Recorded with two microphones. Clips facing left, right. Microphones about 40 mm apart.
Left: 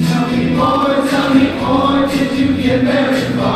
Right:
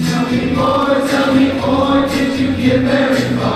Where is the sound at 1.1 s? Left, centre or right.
Centre.